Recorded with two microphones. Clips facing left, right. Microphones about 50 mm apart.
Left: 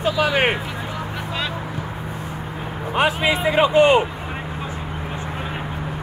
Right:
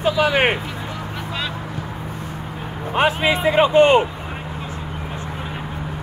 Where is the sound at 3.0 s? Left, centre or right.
Right.